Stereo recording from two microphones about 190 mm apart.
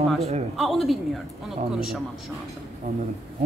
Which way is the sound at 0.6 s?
Centre (ahead or behind).